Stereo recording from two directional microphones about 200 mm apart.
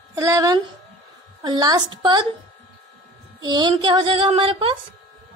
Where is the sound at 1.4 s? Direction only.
20° right (ahead or behind).